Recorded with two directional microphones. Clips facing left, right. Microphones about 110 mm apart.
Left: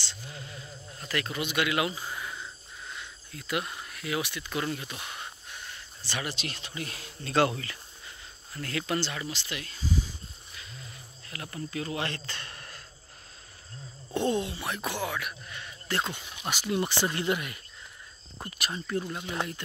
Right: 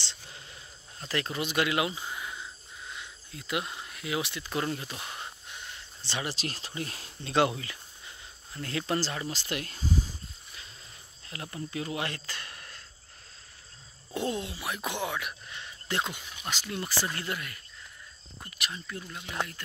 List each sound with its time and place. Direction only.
1.0 s speech: 25° right (ahead or behind)
4.9 s a sound: 25° right (ahead or behind)
7.2 s speech: 15° right (ahead or behind); by 9.9 s 50° right (ahead or behind)
11.4 s speech: 20° right (ahead or behind); by 12.8 s centre (ahead or behind)
14.1 s speech: 5° right (ahead or behind)
14.9 s a sound: 20° right (ahead or behind)
16.4 s speech: 15° left (ahead or behind)
18.6 s speech: 40° left (ahead or behind)